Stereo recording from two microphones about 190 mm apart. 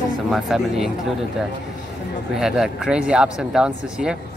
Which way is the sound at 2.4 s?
Centre (ahead or behind).